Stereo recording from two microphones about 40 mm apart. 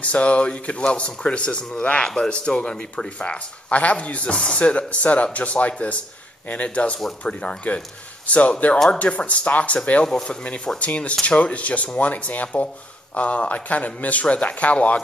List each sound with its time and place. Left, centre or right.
0.0 s speech: left
8.3 s speech: left